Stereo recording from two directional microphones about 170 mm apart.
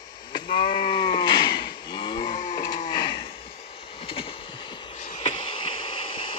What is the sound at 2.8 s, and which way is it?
Livestock, 30° left (ahead or behind).